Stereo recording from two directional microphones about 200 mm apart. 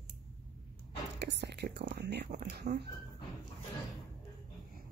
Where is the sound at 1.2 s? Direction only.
60° right (ahead or behind).